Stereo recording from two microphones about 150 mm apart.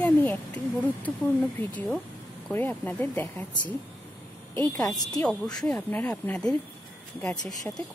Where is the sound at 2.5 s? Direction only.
10° left (ahead or behind).